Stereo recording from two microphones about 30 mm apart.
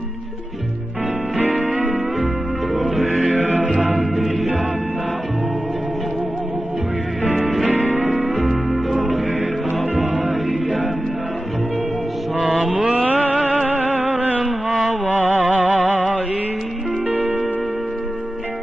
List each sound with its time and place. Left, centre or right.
1.5 s music: right
3.1 s music: right
4.1 s music: centre
7.7 s music: right
8.7 s music: centre
12.4 s mantra: centre
12.7 s mantra: right
13.0 s a sound: right
13.7 s music: right
14.4 s mantra: centre
15.0 s music: right